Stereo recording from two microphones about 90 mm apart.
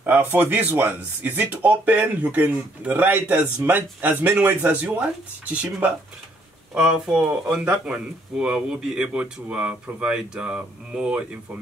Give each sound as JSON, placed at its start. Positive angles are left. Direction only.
{"t": 0.0, "sound": "speech", "side_deg": -20}